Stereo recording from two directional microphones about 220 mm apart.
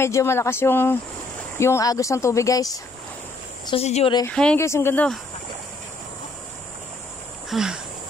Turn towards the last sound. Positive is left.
turn(degrees=0)  # may be behind; listen again after turning